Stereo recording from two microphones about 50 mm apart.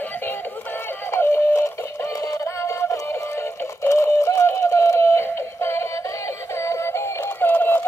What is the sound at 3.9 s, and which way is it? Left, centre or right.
Synthetic singing, left.